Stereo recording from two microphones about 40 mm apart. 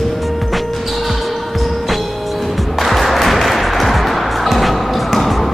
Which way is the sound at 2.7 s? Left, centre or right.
Centre.